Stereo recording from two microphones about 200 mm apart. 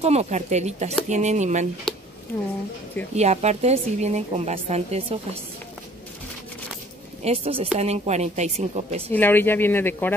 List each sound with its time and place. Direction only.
0.0 s a woman's voice: 35° right (ahead or behind)
3.2 s a woman's voice: 35° right (ahead or behind)
7.2 s a woman's voice: 30° right (ahead or behind)
9.1 s speech: 10° left (ahead or behind)